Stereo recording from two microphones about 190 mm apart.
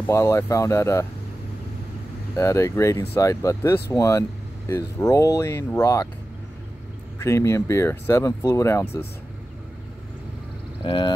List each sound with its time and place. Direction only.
0.0 s speech: 15° left (ahead or behind)
2.3 s speech: 15° left (ahead or behind)
7.2 s speech: 15° left (ahead or behind)
10.9 s a sound: 25° left (ahead or behind)